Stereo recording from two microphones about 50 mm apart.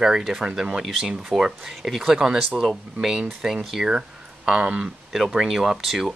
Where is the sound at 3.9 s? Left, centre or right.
Centre.